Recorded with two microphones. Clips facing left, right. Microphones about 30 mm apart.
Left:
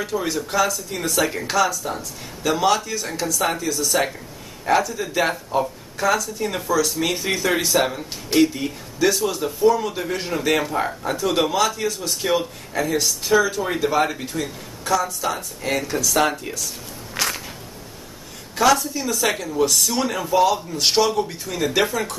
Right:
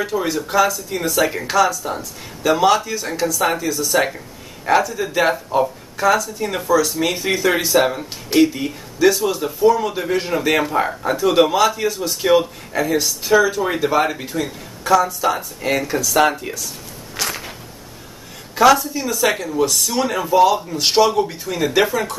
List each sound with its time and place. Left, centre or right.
0.0 s speech: centre
17.2 s a sound: centre
18.5 s speech: centre